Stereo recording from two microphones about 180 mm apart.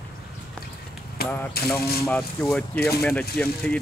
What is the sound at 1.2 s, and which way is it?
Speech, 60° left (ahead or behind).